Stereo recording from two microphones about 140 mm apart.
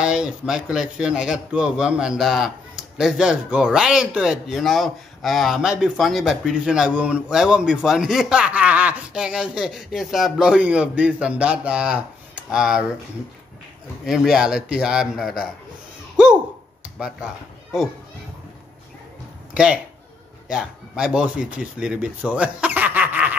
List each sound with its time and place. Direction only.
0.0 s a man's voice: 5° right (ahead or behind)
14.0 s a man's voice: 5° right (ahead or behind)
19.5 s speech: 5° right (ahead or behind)